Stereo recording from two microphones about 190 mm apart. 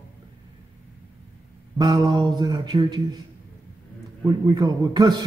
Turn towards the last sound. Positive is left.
turn(degrees=-20)  # may be behind; listen again after turning